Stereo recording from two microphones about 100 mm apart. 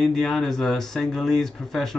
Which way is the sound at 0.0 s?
Centre (ahead or behind).